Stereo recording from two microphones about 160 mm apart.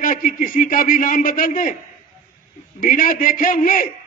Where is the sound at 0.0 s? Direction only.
60° left (ahead or behind).